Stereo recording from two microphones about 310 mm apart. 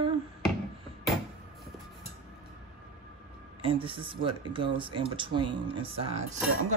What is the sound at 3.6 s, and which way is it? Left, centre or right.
A man's voice, centre.